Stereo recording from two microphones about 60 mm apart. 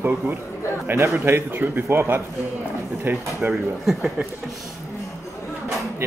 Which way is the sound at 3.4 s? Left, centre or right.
Right.